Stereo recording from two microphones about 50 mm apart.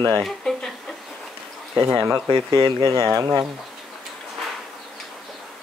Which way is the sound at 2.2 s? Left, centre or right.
Right.